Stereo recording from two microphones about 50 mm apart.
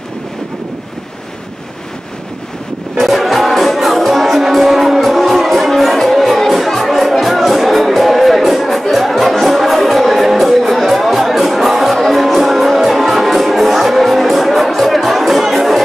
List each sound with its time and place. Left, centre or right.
3.0 s music: centre